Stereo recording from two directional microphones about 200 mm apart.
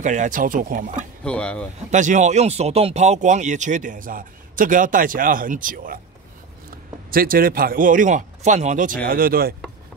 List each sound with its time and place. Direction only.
0.0 s speech: 40° right (ahead or behind)
1.2 s speech: 5° left (ahead or behind)
1.9 s speech: 40° right (ahead or behind)
7.1 s speech: 45° right (ahead or behind)